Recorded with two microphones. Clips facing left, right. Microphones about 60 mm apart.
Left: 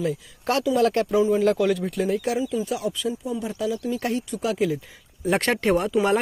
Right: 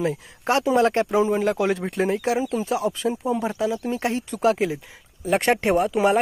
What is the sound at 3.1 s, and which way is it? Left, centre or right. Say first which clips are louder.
Speech: right 4 dB; right.